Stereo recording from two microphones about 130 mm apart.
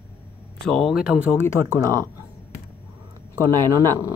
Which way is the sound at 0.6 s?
Centre (ahead or behind).